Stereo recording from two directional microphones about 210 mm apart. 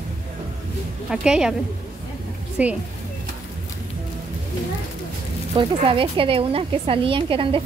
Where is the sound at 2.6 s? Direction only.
5° right (ahead or behind).